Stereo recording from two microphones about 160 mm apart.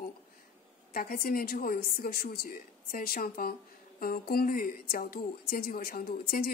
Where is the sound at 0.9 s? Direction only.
65° left (ahead or behind).